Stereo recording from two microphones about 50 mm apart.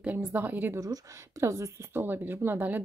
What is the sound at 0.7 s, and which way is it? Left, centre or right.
Speech, right.